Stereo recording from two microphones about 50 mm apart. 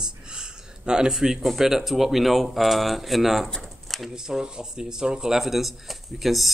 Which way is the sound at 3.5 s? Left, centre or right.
Centre.